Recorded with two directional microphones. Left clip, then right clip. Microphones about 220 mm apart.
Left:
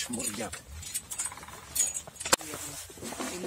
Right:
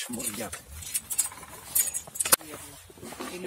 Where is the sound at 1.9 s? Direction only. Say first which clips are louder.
Even; 20° right (ahead or behind).